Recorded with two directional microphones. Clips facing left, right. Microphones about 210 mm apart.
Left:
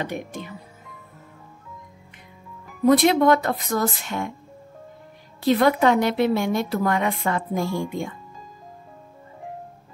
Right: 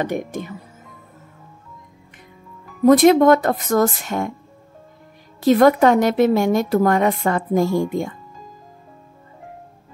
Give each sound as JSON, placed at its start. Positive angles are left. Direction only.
{"t": 0.0, "sound": "a woman's voice", "side_deg": -45}
{"t": 2.8, "sound": "a woman's voice", "side_deg": -45}
{"t": 5.4, "sound": "a woman's voice", "side_deg": -45}